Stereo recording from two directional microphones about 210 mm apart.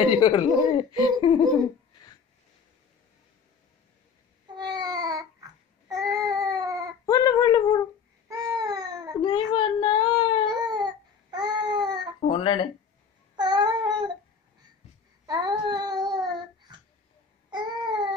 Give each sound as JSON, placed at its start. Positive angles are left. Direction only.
{"t": 0.2, "sound": "speech", "side_deg": 20}
{"t": 4.5, "sound": "babbling", "side_deg": -20}
{"t": 7.1, "sound": "a sound", "side_deg": 20}
{"t": 8.3, "sound": "baby cry", "side_deg": -15}
{"t": 9.2, "sound": "a sound", "side_deg": 20}
{"t": 10.6, "sound": "babbling", "side_deg": -20}
{"t": 12.2, "sound": "a sound", "side_deg": 25}
{"t": 13.4, "sound": "babbling", "side_deg": -20}
{"t": 15.2, "sound": "baby cry", "side_deg": -20}
{"t": 17.5, "sound": "babbling", "side_deg": -20}